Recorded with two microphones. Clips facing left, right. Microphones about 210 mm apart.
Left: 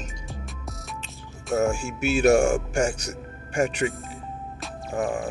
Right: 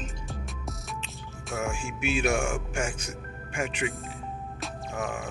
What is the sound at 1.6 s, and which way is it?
Speech, 40° left (ahead or behind).